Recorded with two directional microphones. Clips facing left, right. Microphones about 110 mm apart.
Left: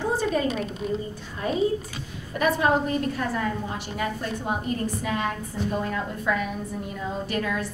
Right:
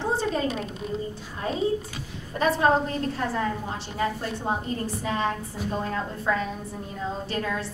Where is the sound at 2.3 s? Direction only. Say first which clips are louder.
Right 1 dB; 30° right (ahead or behind).